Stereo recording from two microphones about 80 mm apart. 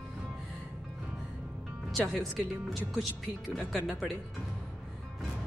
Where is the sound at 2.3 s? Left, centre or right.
Right.